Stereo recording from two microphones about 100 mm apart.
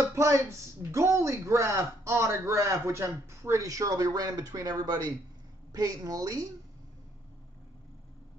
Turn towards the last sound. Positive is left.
turn(degrees=-35)  # may be behind; listen again after turning